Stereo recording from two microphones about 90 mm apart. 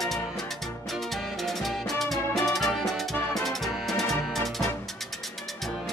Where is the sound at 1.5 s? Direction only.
Centre (ahead or behind).